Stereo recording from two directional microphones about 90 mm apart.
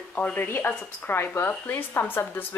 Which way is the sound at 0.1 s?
15° left (ahead or behind).